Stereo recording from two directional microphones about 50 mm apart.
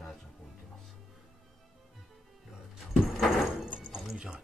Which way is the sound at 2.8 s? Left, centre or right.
Centre.